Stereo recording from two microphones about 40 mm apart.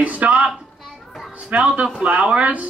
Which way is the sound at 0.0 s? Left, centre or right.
Right.